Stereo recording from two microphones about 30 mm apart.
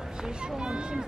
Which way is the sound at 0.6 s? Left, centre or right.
Right.